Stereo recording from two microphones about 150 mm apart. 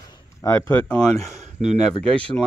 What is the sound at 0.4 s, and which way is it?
Speech, 20° left (ahead or behind).